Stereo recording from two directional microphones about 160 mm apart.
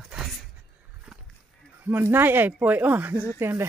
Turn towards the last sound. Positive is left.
turn(degrees=-15)  # may be behind; listen again after turning